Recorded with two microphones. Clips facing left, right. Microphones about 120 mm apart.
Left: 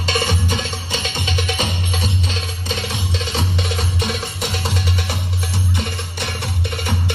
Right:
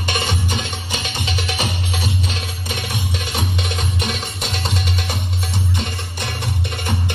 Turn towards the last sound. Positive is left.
turn(degrees=-15)  # may be behind; listen again after turning